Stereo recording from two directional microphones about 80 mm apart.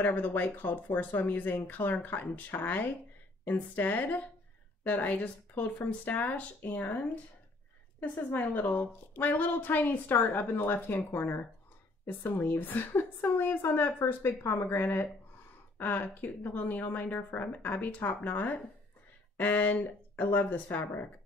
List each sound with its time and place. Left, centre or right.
0.0 s a woman's voice: left
8.0 s a woman's voice: left